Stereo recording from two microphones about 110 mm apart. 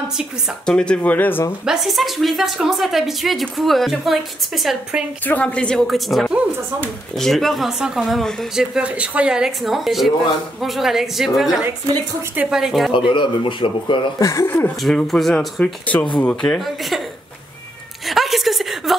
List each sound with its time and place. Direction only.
0.7 s a woman's voice: 10° left (ahead or behind)
1.7 s speech: centre (ahead or behind)
5.2 s a woman's voice: 15° left (ahead or behind); by 12.9 s centre (ahead or behind)
12.9 s speech: 50° left (ahead or behind)
14.2 s speech: 30° left (ahead or behind)
14.8 s a woman's voice: centre (ahead or behind)
16.5 s speech: centre (ahead or behind)
18.0 s a sound: centre (ahead or behind)